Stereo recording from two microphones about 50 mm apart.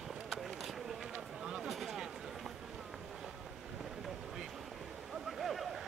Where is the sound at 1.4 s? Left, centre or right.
Centre.